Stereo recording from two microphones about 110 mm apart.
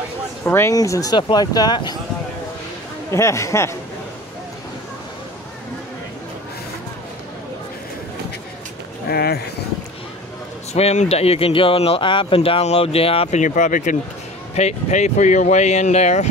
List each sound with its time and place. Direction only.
0.5 s speech: 20° left (ahead or behind)
0.7 s speech: 30° left (ahead or behind)
3.1 s speech: 25° left (ahead or behind)
10.7 s speech: 80° left
14.5 s speech: 80° left